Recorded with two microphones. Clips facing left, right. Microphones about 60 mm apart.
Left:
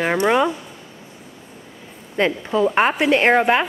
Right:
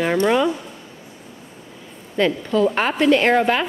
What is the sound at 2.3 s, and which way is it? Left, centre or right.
A woman's voice, centre.